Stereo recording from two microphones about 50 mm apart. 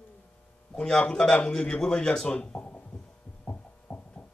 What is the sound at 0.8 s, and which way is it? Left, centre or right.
Speech, centre.